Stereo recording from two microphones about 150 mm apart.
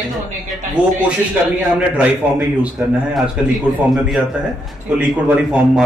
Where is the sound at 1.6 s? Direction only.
10° right (ahead or behind).